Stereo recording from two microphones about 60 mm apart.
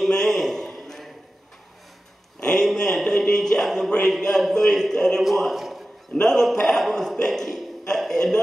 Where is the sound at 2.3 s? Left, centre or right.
Centre.